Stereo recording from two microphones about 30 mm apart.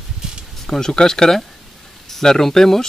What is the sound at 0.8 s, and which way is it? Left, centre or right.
Speech, left.